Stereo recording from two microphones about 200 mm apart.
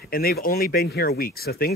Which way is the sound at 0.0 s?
50° left (ahead or behind).